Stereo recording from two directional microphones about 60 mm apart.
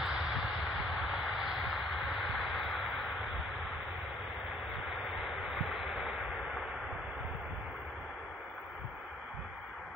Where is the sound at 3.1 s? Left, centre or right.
Centre.